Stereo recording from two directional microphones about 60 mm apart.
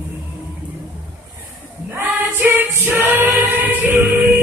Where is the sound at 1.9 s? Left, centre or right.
Right.